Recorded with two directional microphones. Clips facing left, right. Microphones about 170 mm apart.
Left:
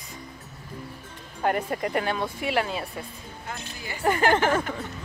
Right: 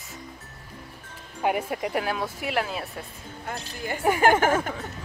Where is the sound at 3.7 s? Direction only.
50° right (ahead or behind).